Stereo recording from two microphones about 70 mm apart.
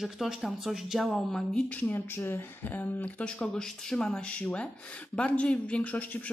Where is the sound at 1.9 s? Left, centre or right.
Left.